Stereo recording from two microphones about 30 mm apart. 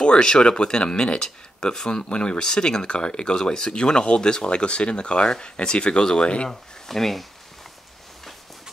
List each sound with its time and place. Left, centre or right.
0.0 s speech: left
6.5 s speech: centre